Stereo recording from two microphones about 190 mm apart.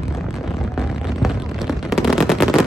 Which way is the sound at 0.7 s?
Centre (ahead or behind).